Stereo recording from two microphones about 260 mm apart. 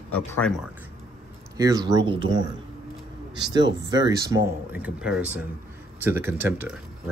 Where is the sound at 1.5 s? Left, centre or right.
Centre.